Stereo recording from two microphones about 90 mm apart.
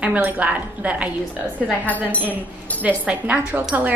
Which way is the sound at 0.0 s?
15° right (ahead or behind).